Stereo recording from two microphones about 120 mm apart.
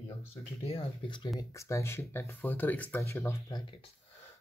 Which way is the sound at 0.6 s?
55° left (ahead or behind).